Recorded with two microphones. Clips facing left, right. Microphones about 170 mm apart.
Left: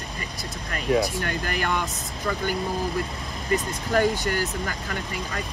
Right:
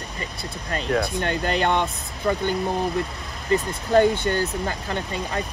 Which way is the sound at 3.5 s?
25° right (ahead or behind).